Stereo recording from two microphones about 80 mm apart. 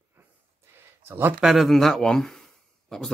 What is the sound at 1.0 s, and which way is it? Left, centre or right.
Speech, right.